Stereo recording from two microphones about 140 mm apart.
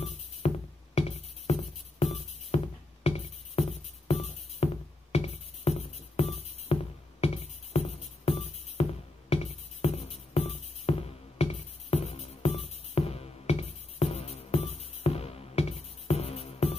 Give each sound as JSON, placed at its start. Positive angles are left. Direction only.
{"t": 0.0, "sound": "music", "side_deg": 45}